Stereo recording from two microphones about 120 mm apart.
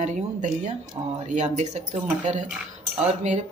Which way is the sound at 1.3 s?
75° right (ahead or behind).